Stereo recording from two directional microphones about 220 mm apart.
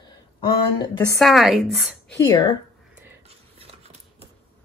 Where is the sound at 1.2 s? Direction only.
Centre (ahead or behind).